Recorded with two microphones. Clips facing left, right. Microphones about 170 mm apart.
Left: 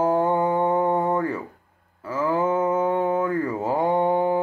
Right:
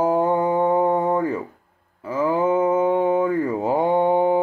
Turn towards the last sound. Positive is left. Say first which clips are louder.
# right 3 dB
turn(degrees=-15)  # may be behind; listen again after turning